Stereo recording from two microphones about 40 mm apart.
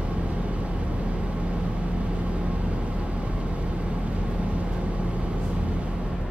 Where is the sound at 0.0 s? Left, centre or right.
Right.